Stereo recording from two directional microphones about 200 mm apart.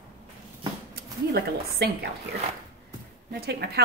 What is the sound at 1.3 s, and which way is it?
Speech, 55° right (ahead or behind).